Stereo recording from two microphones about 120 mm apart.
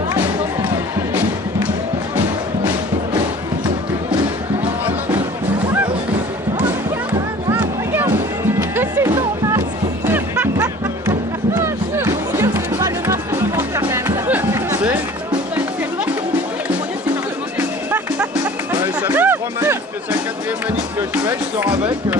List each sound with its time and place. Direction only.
7.5 s music: 15° right (ahead or behind)
19.0 s music: 15° right (ahead or behind)